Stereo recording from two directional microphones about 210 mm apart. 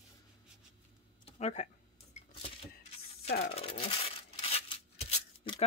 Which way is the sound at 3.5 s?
30° left (ahead or behind).